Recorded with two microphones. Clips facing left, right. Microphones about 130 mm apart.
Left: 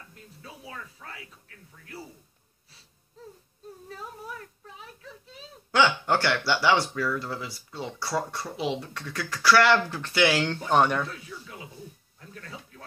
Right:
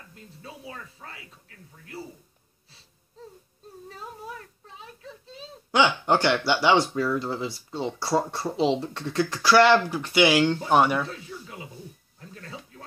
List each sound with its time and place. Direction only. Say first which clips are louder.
0.1 s speech: right 6 dB; 25° right (ahead or behind)
5.7 s speech: right 2 dB; 15° right (ahead or behind)
11.1 s speech: right 2 dB; 30° right (ahead or behind)